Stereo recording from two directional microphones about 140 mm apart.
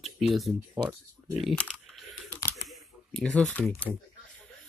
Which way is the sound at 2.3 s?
15° left (ahead or behind).